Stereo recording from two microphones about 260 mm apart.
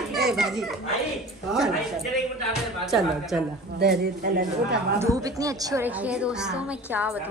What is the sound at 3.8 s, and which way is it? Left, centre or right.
Speech, right.